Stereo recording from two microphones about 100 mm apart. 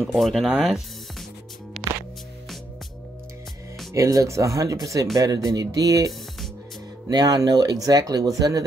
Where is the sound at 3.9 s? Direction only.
35° right (ahead or behind).